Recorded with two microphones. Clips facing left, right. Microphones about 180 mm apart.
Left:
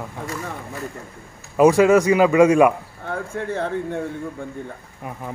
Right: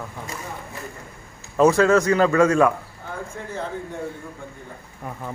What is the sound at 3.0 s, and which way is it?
Speech, 65° left (ahead or behind).